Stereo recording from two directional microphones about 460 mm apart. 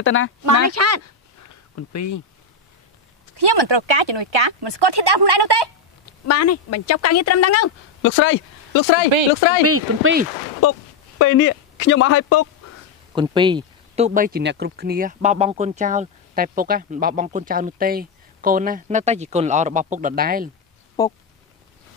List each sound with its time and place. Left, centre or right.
0.0 s speech: left
0.5 s speech: right
1.0 s a sound: left
3.3 s speech: right
6.2 s a woman's voice: left
9.7 s speech: right
10.6 s speech: left
13.1 s speech: centre
21.0 s speech: centre